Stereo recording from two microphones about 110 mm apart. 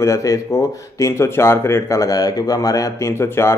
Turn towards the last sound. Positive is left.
turn(degrees=25)  # may be behind; listen again after turning